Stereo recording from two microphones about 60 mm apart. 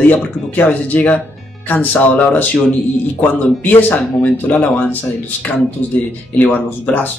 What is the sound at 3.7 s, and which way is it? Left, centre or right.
Speech, left.